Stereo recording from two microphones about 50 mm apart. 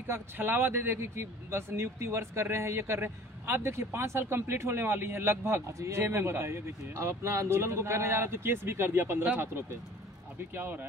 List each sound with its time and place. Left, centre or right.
0.0 s a man's voice: right
10.5 s speech: right